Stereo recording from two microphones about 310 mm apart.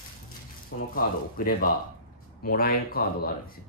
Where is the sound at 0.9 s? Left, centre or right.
Left.